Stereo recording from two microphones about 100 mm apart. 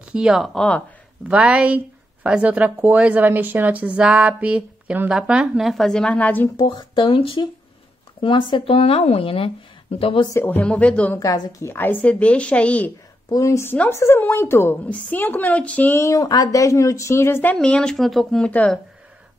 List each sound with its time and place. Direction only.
0.0 s speech: 10° right (ahead or behind); by 0.8 s 10° left (ahead or behind)
1.3 s speech: 10° right (ahead or behind); by 6.5 s 15° left (ahead or behind)
6.7 s speech: 50° left (ahead or behind); by 10.2 s 70° left (ahead or behind)
10.4 s a woman's voice: 15° left (ahead or behind)
11.1 s a woman's voice: 40° left (ahead or behind)
11.6 s a woman's voice: 20° left (ahead or behind)
13.3 s a woman's voice: 30° left (ahead or behind)
17.6 s a woman's voice: 10° left (ahead or behind)
18.5 s a woman's voice: 15° left (ahead or behind)